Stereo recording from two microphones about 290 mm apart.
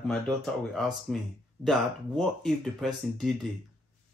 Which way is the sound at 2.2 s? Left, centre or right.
Centre.